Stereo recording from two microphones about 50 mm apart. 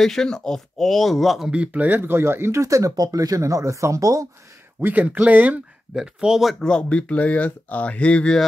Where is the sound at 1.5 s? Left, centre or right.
Right.